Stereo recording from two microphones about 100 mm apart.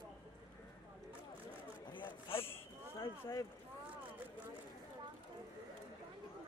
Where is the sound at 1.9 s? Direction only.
50° left (ahead or behind).